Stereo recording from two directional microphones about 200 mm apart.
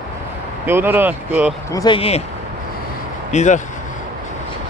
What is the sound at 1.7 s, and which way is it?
Speech, 20° left (ahead or behind).